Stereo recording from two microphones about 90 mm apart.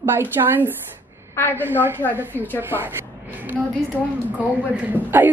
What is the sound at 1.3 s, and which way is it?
Speech, 25° left (ahead or behind).